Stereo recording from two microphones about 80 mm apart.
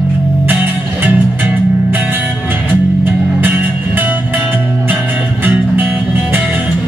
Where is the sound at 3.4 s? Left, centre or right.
Right.